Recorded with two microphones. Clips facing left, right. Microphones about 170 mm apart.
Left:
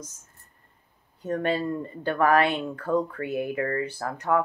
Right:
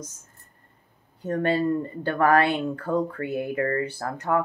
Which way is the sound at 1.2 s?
30° right (ahead or behind).